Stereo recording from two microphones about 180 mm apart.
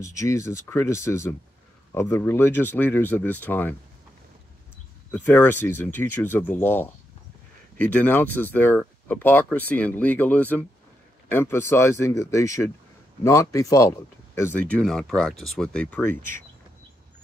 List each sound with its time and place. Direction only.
0.0 s speech: 15° left (ahead or behind)
5.1 s speech: 10° left (ahead or behind)